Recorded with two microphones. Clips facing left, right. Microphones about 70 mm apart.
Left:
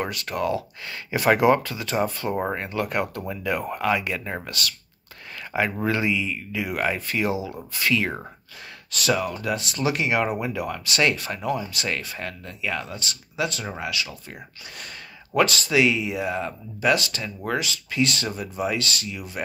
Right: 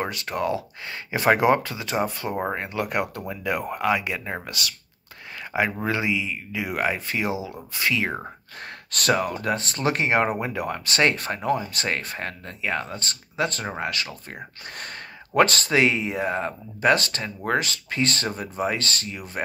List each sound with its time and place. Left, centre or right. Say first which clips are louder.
0.0 s speech: even; right
8.9 s speech: right 1 dB; right